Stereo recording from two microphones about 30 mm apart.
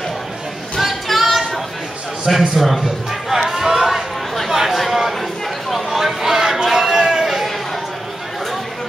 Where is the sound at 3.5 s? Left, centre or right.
Centre.